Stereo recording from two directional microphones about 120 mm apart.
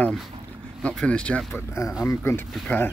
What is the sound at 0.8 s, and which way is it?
Speech, 10° left (ahead or behind).